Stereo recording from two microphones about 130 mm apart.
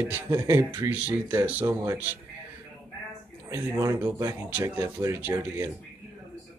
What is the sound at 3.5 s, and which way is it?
Speech, 25° right (ahead or behind).